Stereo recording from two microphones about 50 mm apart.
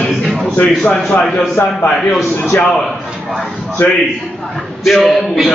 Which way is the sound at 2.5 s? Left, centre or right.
Left.